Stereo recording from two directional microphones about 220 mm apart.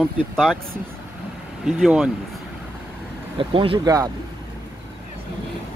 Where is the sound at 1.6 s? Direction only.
5° right (ahead or behind).